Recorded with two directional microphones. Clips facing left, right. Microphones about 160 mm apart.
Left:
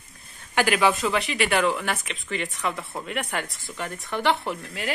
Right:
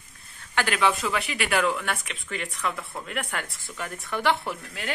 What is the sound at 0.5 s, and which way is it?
Speech, 10° left (ahead or behind).